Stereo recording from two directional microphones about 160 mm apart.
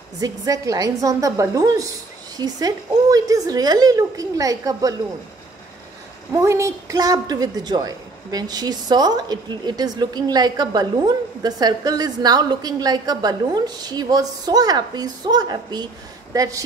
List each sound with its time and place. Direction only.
0.2 s a woman's voice: 25° right (ahead or behind)
6.3 s a woman's voice: 20° right (ahead or behind)